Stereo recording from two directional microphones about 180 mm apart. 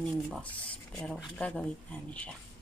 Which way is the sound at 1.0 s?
5° left (ahead or behind).